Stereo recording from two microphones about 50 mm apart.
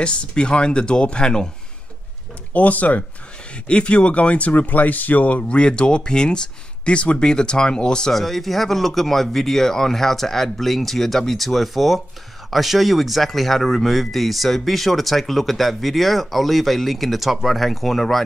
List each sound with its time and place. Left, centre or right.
0.0 s speech: left
2.5 s speech: left; by 8.1 s centre
8.1 s speech: centre